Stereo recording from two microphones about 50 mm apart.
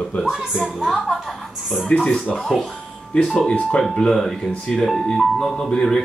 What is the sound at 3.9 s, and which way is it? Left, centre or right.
Speech, centre.